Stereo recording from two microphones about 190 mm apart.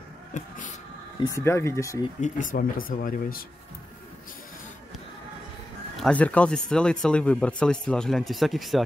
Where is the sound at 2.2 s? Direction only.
40° left (ahead or behind).